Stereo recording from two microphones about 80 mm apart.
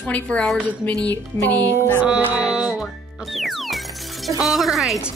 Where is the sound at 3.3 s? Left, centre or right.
Centre.